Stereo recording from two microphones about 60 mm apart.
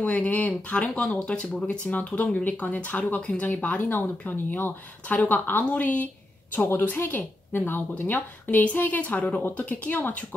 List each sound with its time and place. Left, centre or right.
0.0 s speech: left
1.6 s speech: left
6.5 s a woman's voice: left